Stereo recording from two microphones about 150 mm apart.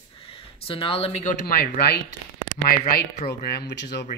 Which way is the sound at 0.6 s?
35° left (ahead or behind).